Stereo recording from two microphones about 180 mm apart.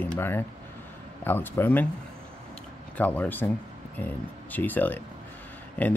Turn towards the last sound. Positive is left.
turn(degrees=10)  # may be behind; listen again after turning